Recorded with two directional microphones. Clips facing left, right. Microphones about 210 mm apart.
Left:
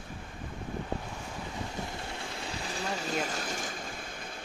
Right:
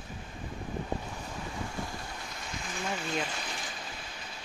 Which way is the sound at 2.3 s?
35° left (ahead or behind).